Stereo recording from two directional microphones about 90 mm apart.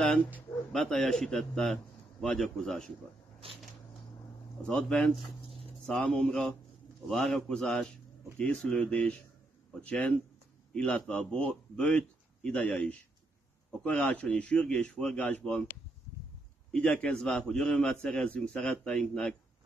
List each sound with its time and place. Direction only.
0.7 s a man's voice: 5° left (ahead or behind)
3.4 s a sound: 90° right
4.6 s a man's voice: 5° left (ahead or behind)
16.7 s a man's voice: 10° left (ahead or behind)